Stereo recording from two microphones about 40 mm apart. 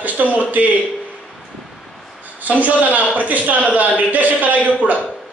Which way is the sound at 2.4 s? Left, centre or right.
Right.